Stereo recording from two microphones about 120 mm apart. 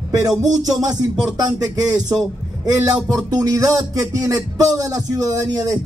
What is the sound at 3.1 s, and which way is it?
Speech, 30° right (ahead or behind).